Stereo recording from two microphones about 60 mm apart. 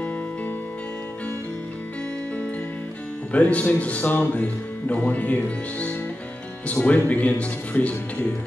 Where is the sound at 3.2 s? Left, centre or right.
Left.